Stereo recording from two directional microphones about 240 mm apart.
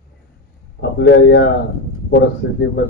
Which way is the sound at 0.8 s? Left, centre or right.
Left.